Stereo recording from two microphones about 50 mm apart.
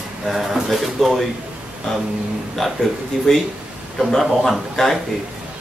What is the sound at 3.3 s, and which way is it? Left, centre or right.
Speech, centre.